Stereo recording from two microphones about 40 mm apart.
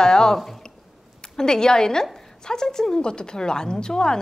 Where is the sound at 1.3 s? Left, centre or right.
Centre.